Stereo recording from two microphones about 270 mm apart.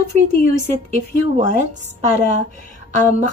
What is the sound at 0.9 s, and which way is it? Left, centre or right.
Speech, right.